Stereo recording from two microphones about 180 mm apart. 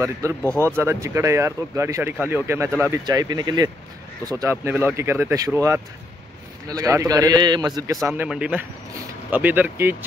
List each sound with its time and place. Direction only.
0.0 s a man's voice: 15° right (ahead or behind)
8.2 s speech: 5° right (ahead or behind)